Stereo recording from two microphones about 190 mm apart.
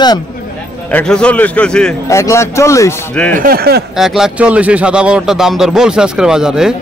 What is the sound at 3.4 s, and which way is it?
Speech, 50° right (ahead or behind).